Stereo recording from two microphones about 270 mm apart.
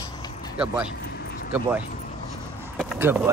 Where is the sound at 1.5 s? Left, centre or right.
Centre.